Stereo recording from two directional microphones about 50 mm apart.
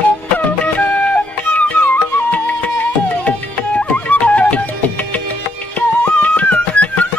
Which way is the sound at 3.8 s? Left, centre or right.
Left.